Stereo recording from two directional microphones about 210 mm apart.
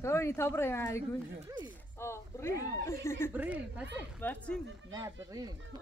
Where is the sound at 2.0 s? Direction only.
10° left (ahead or behind).